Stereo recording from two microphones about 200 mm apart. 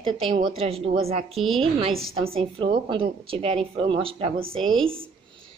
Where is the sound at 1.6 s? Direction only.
30° right (ahead or behind).